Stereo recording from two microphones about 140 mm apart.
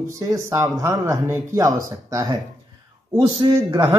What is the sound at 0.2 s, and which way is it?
Speech, 20° right (ahead or behind).